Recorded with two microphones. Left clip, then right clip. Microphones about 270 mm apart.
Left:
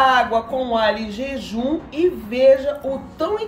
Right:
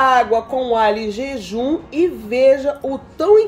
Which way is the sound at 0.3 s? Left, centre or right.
Right.